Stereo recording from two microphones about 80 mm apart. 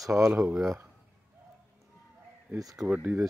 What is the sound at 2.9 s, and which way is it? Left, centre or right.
Speech, centre.